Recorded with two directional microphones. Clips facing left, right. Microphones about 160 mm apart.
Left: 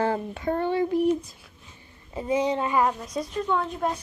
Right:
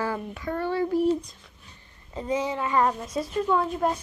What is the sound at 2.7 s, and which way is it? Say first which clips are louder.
A woman's voice: even; centre (ahead or behind).